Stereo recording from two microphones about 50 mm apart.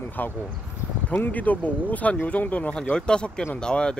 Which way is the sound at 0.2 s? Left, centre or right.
Left.